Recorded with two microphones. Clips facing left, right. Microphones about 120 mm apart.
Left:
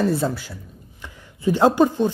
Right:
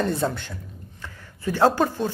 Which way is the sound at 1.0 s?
15° left (ahead or behind).